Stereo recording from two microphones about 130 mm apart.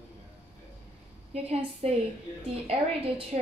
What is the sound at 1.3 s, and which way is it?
A woman's voice, 55° right (ahead or behind).